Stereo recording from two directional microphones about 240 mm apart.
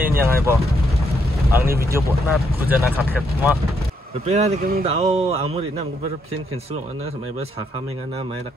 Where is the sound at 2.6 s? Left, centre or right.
Centre.